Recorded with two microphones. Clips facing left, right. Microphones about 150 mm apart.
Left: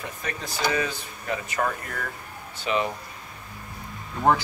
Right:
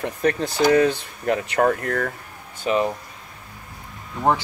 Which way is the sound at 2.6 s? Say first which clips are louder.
Right 5 dB; 40° right (ahead or behind).